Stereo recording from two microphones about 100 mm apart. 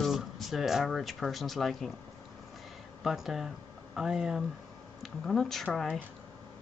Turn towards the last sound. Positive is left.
turn(degrees=5)  # may be behind; listen again after turning